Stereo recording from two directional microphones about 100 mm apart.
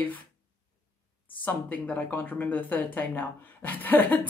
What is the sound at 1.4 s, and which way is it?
Speech, 15° left (ahead or behind).